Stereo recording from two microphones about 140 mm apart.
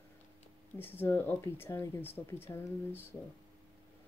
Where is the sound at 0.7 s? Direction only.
15° left (ahead or behind).